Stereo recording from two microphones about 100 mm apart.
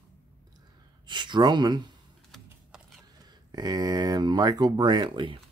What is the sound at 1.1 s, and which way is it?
Speech, 50° right (ahead or behind).